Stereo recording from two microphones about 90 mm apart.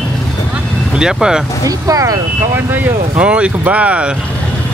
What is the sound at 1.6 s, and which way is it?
Speech, 40° right (ahead or behind).